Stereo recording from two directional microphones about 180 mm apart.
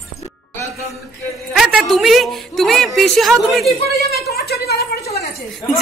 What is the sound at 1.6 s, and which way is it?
A woman's voice, centre (ahead or behind).